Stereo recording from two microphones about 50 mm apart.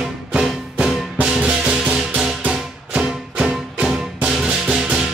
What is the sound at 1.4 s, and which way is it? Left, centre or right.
Music, centre.